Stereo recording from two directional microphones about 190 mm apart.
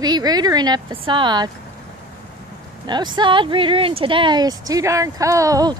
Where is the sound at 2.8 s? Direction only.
25° right (ahead or behind).